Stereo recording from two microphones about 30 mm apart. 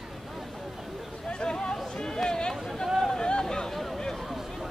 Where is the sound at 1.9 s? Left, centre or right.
Left.